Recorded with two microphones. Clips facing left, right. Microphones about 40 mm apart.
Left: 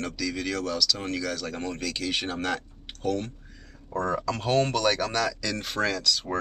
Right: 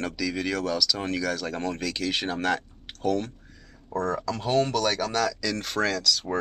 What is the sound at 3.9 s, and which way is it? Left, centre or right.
Speech, left.